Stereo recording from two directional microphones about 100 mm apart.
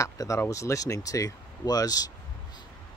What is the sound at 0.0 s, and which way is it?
Speech, 30° left (ahead or behind).